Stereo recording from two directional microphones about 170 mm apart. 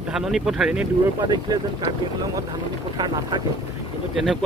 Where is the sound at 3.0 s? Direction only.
25° right (ahead or behind).